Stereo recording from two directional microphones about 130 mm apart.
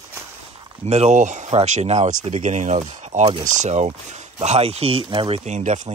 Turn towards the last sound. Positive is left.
turn(degrees=-65)  # may be behind; listen again after turning